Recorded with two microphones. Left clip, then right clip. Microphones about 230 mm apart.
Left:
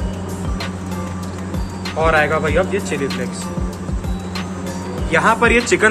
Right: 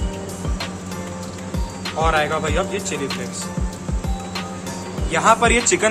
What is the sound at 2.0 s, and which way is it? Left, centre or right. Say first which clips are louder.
Speech: left 4 dB; centre.